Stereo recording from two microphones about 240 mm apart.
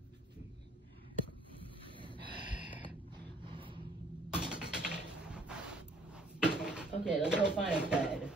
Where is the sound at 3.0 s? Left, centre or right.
Right.